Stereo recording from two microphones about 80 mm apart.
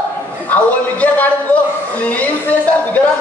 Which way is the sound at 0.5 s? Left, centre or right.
Left.